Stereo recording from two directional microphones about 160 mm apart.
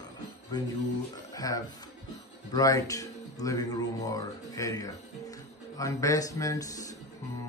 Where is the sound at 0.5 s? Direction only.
25° left (ahead or behind).